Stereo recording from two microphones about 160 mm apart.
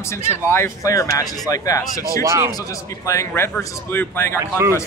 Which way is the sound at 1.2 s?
Centre (ahead or behind).